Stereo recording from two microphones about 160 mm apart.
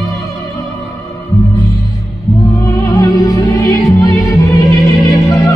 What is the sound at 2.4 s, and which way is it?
Music, 20° left (ahead or behind).